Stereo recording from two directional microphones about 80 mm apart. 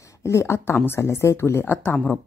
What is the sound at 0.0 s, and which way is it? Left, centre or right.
A woman's voice, left.